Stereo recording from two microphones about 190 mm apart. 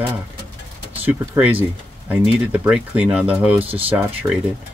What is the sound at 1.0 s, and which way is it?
Speech, 10° right (ahead or behind).